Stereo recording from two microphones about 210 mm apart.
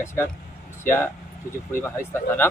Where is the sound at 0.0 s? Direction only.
10° left (ahead or behind).